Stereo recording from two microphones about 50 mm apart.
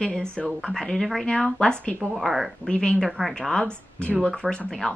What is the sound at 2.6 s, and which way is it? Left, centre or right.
A woman's voice, left.